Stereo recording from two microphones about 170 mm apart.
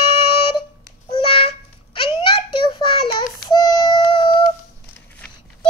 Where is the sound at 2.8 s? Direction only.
30° left (ahead or behind).